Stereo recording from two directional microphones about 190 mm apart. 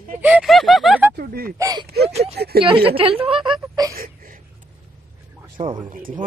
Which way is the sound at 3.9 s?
50° right (ahead or behind).